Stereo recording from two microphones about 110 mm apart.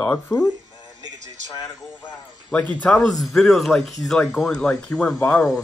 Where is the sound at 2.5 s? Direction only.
15° left (ahead or behind).